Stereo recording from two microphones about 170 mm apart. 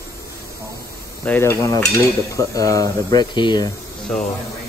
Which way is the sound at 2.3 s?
20° left (ahead or behind).